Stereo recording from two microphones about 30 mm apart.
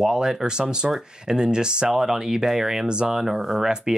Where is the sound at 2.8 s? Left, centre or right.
Right.